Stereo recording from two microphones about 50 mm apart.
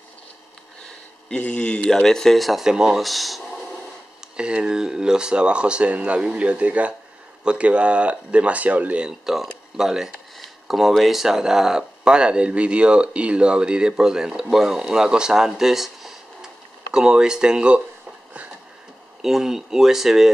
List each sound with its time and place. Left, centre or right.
1.4 s a man's voice: left
1.9 s speech: centre
2.6 s speech: centre
3.0 s speech: centre
4.4 s speech: centre
9.0 s speech: centre
16.9 s speech: centre
19.2 s speech: centre